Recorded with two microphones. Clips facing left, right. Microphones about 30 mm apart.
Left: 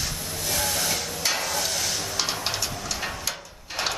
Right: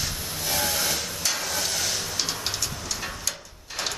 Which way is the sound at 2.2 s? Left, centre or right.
Centre.